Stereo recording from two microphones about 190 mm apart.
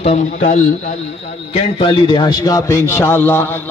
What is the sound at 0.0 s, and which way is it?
Speech, 40° left (ahead or behind).